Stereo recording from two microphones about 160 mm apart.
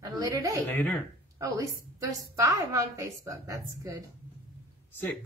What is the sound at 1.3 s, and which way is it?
A woman's voice, 20° right (ahead or behind).